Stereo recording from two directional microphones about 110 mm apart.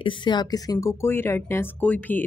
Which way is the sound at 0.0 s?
45° left (ahead or behind).